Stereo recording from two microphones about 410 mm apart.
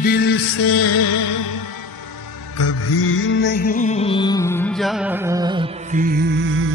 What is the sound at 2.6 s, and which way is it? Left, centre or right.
Music, left.